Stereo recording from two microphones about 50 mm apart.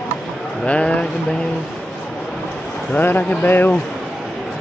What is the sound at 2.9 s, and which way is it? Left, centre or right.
Speech, left.